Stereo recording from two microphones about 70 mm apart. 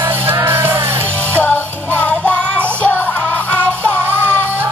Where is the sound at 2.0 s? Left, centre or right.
Centre.